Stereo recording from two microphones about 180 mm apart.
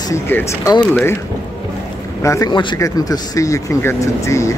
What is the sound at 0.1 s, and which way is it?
Speech, 15° left (ahead or behind).